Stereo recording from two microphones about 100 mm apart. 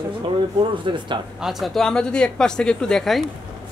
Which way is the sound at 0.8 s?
55° right (ahead or behind).